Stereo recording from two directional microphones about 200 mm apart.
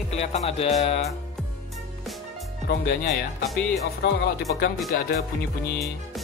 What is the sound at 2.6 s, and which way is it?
Speech, 55° left (ahead or behind).